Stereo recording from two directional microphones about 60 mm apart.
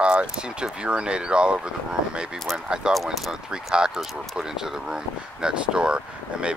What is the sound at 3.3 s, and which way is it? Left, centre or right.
Speech, centre.